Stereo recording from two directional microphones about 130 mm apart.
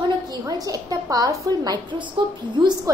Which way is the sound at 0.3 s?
30° right (ahead or behind).